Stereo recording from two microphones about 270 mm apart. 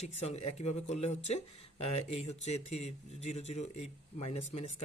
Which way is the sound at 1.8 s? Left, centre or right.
Left.